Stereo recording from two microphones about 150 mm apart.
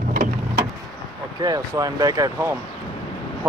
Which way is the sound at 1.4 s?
25° right (ahead or behind).